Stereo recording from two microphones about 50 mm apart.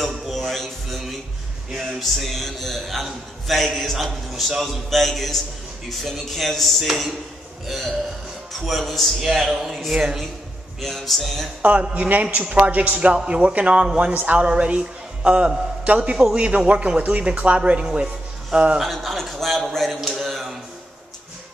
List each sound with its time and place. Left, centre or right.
0.0 s a man's voice: centre
10.8 s a man's voice: centre
11.8 s speech: right
12.7 s speech: right
14.5 s a man's voice: centre
18.8 s a man's voice: centre